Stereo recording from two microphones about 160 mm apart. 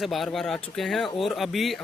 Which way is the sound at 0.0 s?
Centre (ahead or behind).